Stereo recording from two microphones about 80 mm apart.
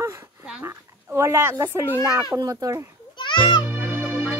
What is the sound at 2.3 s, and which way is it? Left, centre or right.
Speech, right.